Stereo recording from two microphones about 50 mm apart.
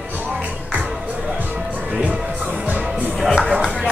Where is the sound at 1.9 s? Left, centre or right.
Right.